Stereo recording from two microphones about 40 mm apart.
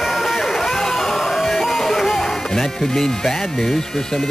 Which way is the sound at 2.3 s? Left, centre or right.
Centre.